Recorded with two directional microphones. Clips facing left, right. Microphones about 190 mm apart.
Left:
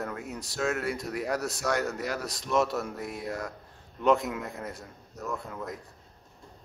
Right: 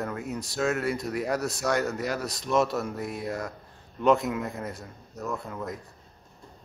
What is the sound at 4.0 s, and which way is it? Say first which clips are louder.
Speech: right 2 dB; 25° right (ahead or behind).